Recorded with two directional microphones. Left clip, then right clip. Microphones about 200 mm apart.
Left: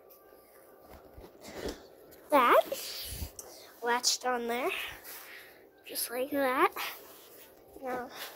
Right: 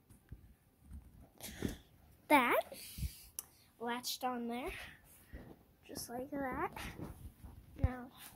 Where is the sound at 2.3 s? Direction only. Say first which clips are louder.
Left 7 dB; 20° right (ahead or behind).